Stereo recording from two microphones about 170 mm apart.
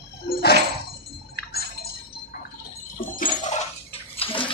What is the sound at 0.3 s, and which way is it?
Music, 70° left (ahead or behind).